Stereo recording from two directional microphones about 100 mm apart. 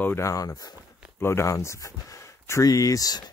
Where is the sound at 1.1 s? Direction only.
25° left (ahead or behind).